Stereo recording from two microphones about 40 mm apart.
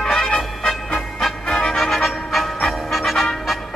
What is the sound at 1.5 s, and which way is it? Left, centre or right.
Music, centre.